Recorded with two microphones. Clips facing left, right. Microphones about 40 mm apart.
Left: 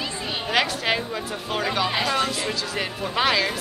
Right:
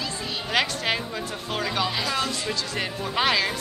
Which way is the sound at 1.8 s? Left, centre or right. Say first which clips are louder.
Left 3 dB; left.